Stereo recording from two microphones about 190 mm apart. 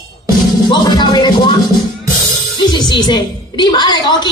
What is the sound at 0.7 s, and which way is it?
Music, 20° left (ahead or behind).